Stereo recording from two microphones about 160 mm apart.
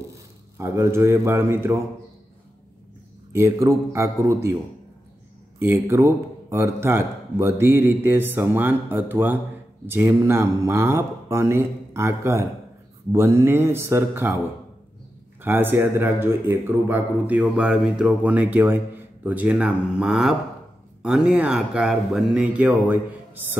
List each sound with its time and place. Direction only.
0.1 s speech: 15° right (ahead or behind)
3.3 s speech: 20° right (ahead or behind)
5.6 s speech: 15° right (ahead or behind)
15.4 s speech: 10° right (ahead or behind)